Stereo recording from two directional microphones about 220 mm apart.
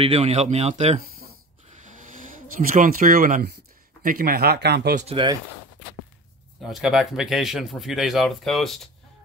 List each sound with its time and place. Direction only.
0.0 s speech: 30° right (ahead or behind)
1.7 s a sound: 35° right (ahead or behind)
4.0 s speech: 40° right (ahead or behind)
5.0 s speech: 20° right (ahead or behind)
6.6 s speech: centre (ahead or behind)